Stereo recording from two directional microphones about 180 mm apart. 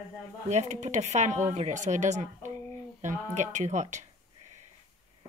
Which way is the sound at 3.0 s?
40° right (ahead or behind).